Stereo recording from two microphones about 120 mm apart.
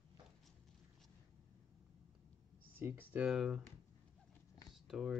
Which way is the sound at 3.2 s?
5° right (ahead or behind).